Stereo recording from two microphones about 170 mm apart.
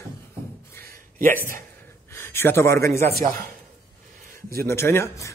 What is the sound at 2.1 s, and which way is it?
A man's voice, 15° left (ahead or behind).